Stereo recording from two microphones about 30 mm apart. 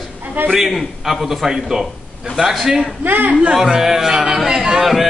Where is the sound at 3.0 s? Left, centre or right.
Right.